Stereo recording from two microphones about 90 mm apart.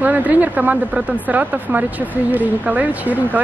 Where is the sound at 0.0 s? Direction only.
20° right (ahead or behind).